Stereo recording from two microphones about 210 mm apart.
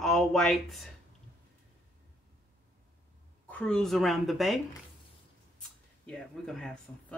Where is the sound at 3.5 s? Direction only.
5° left (ahead or behind).